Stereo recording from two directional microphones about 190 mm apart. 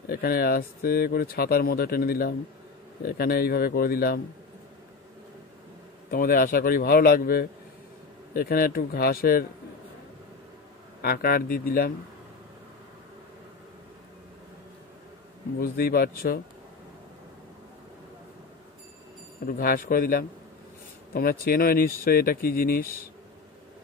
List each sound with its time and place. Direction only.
0.1 s speech: 50° left (ahead or behind)
6.0 s speech: 50° left (ahead or behind)
11.0 s speech: 50° left (ahead or behind)
15.6 s speech: 50° left (ahead or behind)
19.4 s speech: 50° left (ahead or behind)